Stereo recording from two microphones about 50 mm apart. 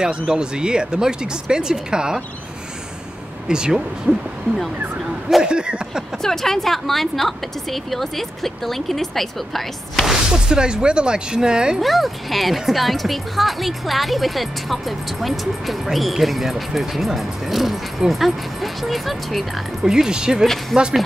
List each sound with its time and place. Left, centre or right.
0.3 s speech: centre
3.4 s speech: centre
5.4 s a sound: centre
6.2 s speech: centre
10.0 s speech: centre
11.8 s speech: centre
19.8 s speech: centre
20.7 s speech: centre